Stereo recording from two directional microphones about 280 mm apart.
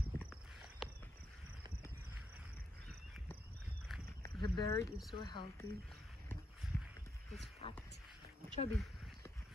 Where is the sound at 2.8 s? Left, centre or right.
Centre.